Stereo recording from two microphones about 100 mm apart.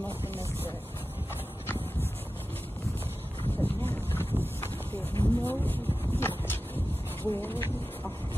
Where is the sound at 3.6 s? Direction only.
20° left (ahead or behind).